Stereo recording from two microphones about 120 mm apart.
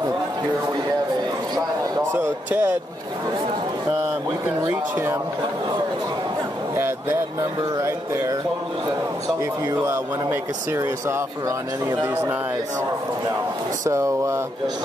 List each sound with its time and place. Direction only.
1.5 s a sound: 20° right (ahead or behind)
4.6 s speech: 20° right (ahead or behind)
6.7 s speech: 20° right (ahead or behind)
9.8 s speech: 20° right (ahead or behind)
13.8 s speech: 25° right (ahead or behind)